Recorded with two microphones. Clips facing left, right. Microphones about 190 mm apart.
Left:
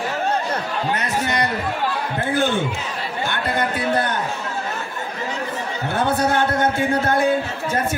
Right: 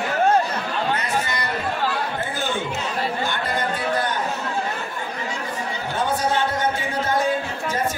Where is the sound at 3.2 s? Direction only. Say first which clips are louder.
Left 2 dB; 55° left (ahead or behind).